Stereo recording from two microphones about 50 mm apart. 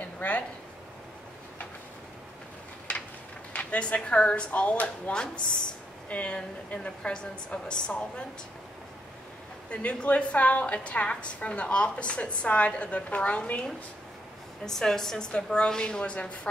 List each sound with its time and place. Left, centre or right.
0.2 s speech: left
3.5 s a woman's voice: left
5.1 s a woman's voice: centre
9.7 s a woman's voice: left
14.7 s a woman's voice: centre